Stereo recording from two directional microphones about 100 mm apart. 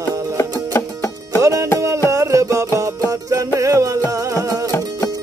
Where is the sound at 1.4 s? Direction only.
30° right (ahead or behind).